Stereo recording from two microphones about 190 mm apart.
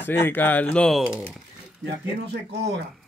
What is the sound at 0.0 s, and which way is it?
Speech, 10° left (ahead or behind).